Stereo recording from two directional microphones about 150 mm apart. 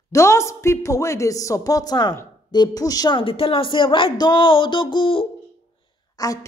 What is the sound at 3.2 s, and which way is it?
Speech, 35° left (ahead or behind).